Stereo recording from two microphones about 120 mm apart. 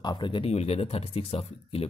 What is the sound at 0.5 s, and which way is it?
Speech, 60° left (ahead or behind).